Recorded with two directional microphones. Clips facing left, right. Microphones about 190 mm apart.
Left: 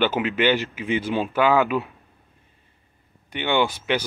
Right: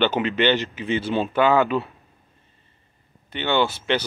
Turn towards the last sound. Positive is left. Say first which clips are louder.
# even
turn(degrees=10)  # may be behind; listen again after turning